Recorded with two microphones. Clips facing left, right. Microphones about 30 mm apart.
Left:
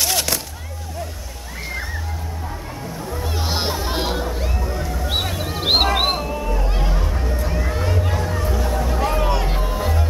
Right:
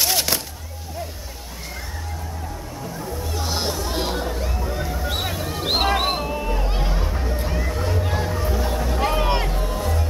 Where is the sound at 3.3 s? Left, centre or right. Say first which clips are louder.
Left 2 dB; left.